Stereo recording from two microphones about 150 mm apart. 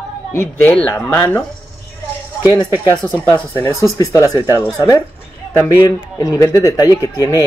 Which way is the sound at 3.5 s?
20° left (ahead or behind).